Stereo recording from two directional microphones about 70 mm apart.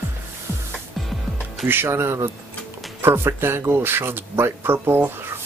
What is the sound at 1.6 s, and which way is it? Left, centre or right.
Speech, right.